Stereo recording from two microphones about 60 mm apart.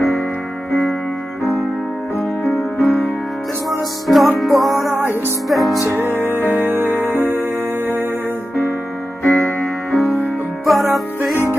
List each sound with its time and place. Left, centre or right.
2.4 s music: centre
4.1 s music: centre
5.9 s music: right
9.2 s music: centre